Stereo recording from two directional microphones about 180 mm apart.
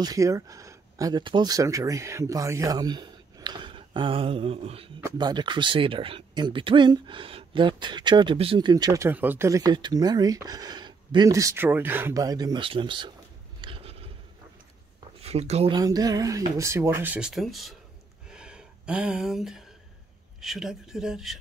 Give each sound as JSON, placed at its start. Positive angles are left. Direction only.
{"t": 0.0, "sound": "speech", "side_deg": -20}
{"t": 13.6, "sound": "a sound", "side_deg": -30}
{"t": 15.2, "sound": "speech", "side_deg": -35}
{"t": 15.8, "sound": "speech", "side_deg": -20}
{"t": 18.3, "sound": "a sound", "side_deg": -5}
{"t": 20.3, "sound": "speech", "side_deg": 0}